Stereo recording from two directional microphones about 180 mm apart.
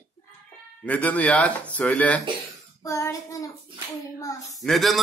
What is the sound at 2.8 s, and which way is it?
Child singing, 20° left (ahead or behind).